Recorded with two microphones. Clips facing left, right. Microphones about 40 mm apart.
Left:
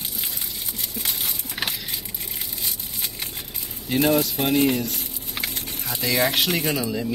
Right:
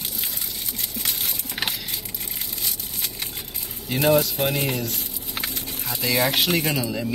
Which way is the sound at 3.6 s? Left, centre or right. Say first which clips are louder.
Left 2 dB; centre.